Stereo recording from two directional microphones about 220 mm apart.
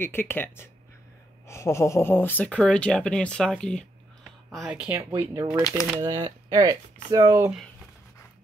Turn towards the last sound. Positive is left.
turn(degrees=-10)  # may be behind; listen again after turning